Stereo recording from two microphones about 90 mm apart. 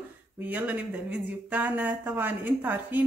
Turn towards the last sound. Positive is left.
turn(degrees=-20)  # may be behind; listen again after turning